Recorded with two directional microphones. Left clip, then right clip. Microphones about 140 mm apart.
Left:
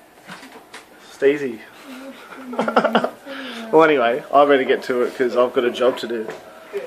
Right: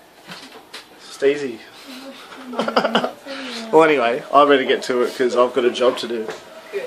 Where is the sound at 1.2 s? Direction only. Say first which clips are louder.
Left 1 dB; 50° left (ahead or behind).